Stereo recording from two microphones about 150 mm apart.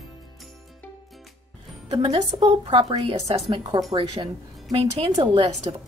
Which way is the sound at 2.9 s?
30° right (ahead or behind).